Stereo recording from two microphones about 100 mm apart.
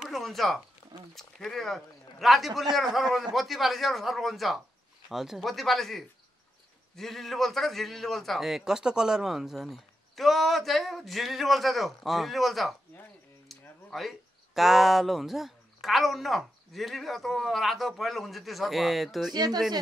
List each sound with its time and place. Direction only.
0.0 s a sound: centre (ahead or behind)
1.1 s a man's voice: 5° left (ahead or behind)
19.3 s speech: 45° right (ahead or behind)